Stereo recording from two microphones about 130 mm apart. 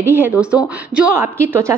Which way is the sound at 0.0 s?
15° right (ahead or behind).